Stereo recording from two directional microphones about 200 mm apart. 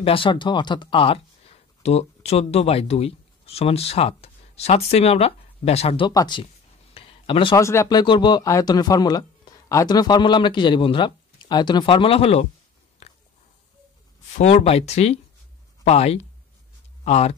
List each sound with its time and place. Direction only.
0.0 s speech: 25° left (ahead or behind)
7.6 s speech: 15° left (ahead or behind); by 12.4 s 30° left (ahead or behind)
13.0 s biting: 30° left (ahead or behind)
14.3 s speech: 35° left (ahead or behind)